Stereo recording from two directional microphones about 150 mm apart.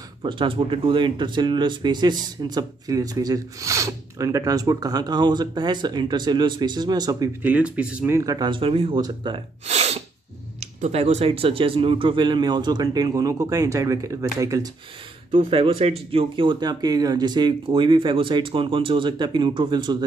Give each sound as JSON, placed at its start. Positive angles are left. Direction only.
{"t": 0.2, "sound": "speech", "side_deg": -35}
{"t": 7.4, "sound": "speech", "side_deg": -10}
{"t": 9.7, "sound": "sneeze", "side_deg": -45}
{"t": 10.6, "sound": "speech", "side_deg": -50}
{"t": 15.3, "sound": "speech", "side_deg": -35}